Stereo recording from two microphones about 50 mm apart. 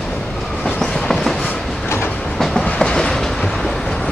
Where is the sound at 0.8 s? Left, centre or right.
Centre.